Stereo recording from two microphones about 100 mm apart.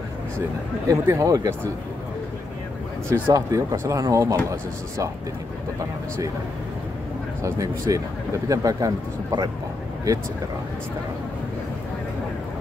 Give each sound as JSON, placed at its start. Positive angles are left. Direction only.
{"t": 0.8, "sound": "speech", "side_deg": -30}
{"t": 3.1, "sound": "speech", "side_deg": -30}
{"t": 7.4, "sound": "speech", "side_deg": -35}